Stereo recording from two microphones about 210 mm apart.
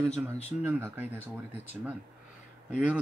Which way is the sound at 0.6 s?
10° right (ahead or behind).